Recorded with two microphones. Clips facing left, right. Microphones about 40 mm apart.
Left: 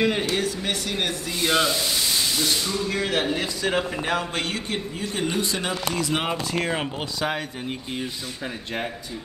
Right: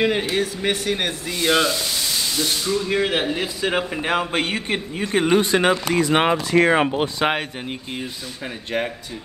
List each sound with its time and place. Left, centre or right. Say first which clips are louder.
0.0 s speech: right 3 dB; centre
0.6 s a man's voice: right 4 dB; right
2.6 s speech: right 4 dB; centre
2.9 s a man's voice: right 2 dB; right
4.9 s speech: right 10 dB; right
6.3 s speech: right 9 dB; right